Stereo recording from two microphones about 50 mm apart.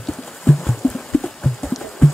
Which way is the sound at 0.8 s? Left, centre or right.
Left.